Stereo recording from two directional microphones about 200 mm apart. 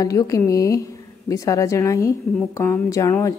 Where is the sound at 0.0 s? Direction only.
15° left (ahead or behind).